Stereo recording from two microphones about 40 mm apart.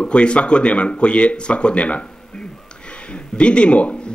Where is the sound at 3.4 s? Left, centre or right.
Left.